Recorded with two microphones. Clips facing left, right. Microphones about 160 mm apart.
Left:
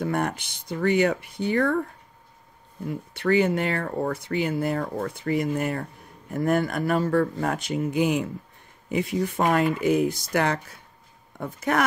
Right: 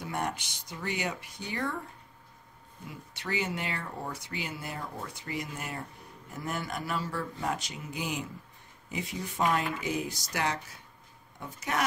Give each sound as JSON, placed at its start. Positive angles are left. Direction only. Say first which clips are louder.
{"t": 0.0, "sound": "speech", "louder": "left 8 dB", "side_deg": 55}
{"t": 2.9, "sound": "speech", "louder": "left 13 dB", "side_deg": 55}